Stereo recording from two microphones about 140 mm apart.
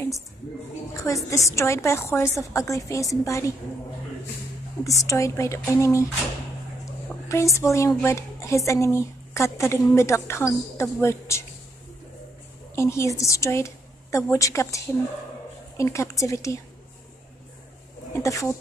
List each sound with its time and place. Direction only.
0.9 s a woman's voice: 20° left (ahead or behind)
4.8 s a woman's voice: 25° left (ahead or behind)
7.2 s a woman's voice: 20° left (ahead or behind)
12.7 s a woman's voice: 20° left (ahead or behind)
15.8 s a woman's voice: 20° left (ahead or behind)
18.1 s a woman's voice: 20° left (ahead or behind)